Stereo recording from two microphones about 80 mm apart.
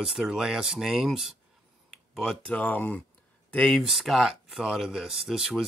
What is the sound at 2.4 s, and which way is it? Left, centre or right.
Speech, centre.